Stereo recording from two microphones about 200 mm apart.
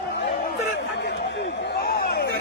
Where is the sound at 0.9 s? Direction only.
65° left (ahead or behind).